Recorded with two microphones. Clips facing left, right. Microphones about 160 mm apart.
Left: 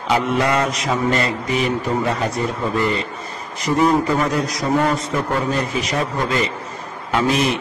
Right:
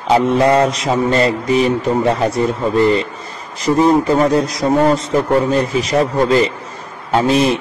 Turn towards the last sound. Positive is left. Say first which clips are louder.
# right 5 dB
turn(degrees=-30)  # may be behind; listen again after turning